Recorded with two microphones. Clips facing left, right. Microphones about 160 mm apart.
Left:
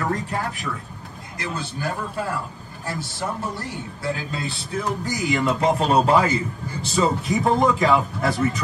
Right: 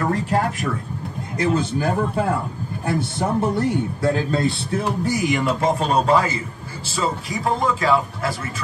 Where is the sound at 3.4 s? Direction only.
60° right (ahead or behind).